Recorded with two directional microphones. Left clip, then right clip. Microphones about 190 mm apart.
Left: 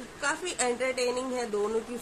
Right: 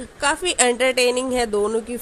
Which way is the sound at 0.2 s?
40° right (ahead or behind).